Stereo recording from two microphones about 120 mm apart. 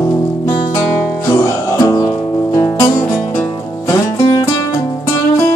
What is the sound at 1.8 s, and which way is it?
Music, 30° left (ahead or behind).